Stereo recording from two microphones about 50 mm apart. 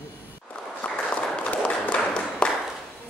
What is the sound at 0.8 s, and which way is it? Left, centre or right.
Applause, left.